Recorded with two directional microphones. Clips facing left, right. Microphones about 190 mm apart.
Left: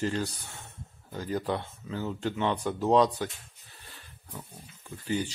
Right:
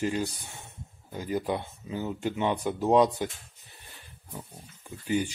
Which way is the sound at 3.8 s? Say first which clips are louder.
Left 1 dB; 15° right (ahead or behind).